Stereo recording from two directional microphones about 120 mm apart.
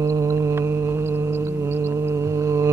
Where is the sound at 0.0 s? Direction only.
25° right (ahead or behind).